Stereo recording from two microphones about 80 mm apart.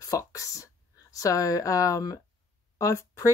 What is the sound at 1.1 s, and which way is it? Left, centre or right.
Speech, left.